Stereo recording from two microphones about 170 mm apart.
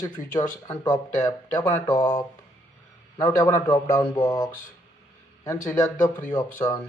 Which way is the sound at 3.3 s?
20° left (ahead or behind).